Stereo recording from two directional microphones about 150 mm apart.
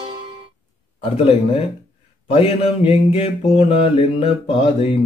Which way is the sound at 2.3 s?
45° left (ahead or behind).